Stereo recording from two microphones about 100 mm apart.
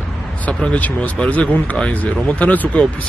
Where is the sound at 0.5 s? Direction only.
10° left (ahead or behind).